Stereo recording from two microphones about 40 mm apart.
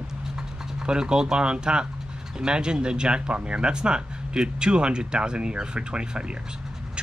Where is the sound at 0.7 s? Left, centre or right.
Right.